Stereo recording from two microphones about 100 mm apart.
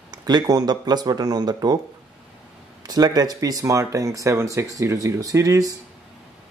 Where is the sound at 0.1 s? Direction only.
40° right (ahead or behind).